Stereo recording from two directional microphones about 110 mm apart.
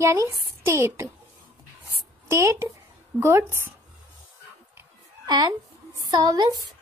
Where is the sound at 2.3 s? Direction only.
25° right (ahead or behind).